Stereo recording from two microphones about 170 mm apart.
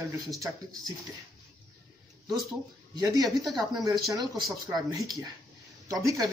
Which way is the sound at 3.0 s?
20° right (ahead or behind).